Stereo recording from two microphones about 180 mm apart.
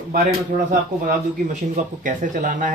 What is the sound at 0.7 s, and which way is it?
Speech, 45° right (ahead or behind).